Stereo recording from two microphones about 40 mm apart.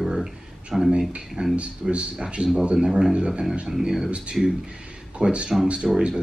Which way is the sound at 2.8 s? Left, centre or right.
Centre.